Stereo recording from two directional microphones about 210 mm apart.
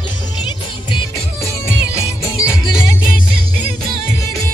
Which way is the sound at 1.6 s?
15° left (ahead or behind).